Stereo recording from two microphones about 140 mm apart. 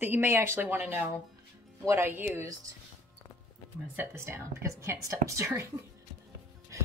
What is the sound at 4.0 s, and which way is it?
A woman's voice, 15° right (ahead or behind).